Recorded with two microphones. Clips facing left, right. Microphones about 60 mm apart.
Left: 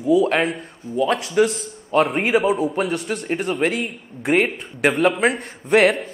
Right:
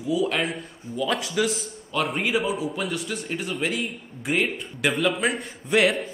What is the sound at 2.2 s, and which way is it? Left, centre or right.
Speech, left.